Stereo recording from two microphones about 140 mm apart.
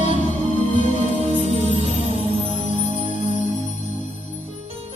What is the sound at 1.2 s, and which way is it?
Music, 50° right (ahead or behind).